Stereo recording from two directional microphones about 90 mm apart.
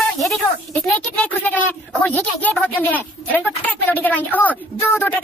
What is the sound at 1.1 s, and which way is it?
A woman's voice, 15° left (ahead or behind).